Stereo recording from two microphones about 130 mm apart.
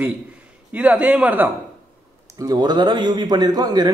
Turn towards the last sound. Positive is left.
turn(degrees=-30)  # may be behind; listen again after turning